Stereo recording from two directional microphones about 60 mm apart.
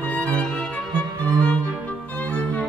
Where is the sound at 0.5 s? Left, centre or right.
Centre.